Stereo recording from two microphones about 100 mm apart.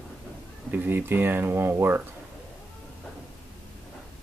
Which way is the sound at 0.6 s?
20° right (ahead or behind).